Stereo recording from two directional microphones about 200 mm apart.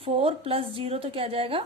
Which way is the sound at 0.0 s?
30° right (ahead or behind).